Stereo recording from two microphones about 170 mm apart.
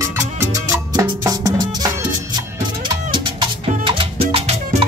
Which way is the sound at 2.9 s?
30° right (ahead or behind).